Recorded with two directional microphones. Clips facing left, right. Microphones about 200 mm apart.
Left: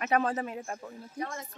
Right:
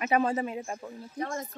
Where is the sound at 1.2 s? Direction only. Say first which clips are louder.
Right 3 dB; 45° right (ahead or behind).